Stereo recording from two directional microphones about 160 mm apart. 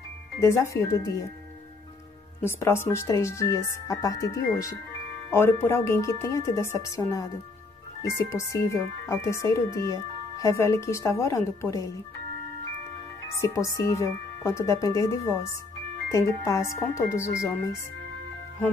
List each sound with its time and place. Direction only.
0.4 s speech: 20° left (ahead or behind)
2.4 s speech: 15° left (ahead or behind)
13.4 s speech: 20° left (ahead or behind)